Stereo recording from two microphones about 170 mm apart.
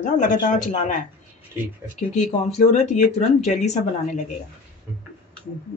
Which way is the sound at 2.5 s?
40° left (ahead or behind).